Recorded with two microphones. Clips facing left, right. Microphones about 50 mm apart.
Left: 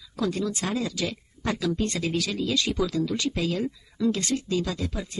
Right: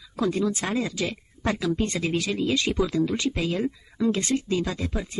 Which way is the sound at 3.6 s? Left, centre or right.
Right.